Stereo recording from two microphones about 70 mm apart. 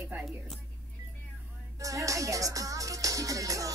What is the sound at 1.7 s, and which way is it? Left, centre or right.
Music, right.